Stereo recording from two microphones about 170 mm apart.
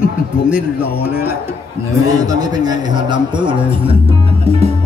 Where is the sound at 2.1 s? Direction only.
20° right (ahead or behind).